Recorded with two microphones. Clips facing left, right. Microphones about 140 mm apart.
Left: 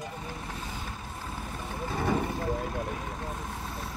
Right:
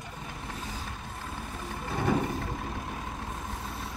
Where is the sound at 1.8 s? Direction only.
Centre (ahead or behind).